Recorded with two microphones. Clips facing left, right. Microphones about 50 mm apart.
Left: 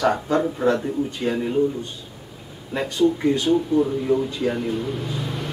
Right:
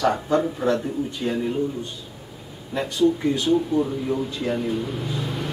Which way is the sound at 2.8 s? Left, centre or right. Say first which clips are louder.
Even; centre.